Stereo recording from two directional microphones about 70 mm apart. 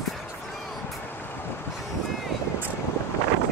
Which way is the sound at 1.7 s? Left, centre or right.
Centre.